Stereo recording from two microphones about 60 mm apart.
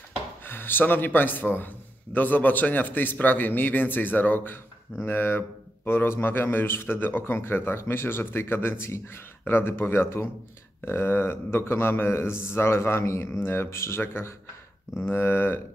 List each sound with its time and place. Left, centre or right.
0.5 s a man's voice: left